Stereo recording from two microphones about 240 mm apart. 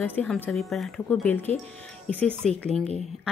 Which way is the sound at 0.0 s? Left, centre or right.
Centre.